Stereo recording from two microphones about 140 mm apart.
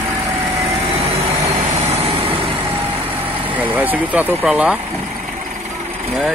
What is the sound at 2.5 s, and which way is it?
Vehicle, 15° right (ahead or behind).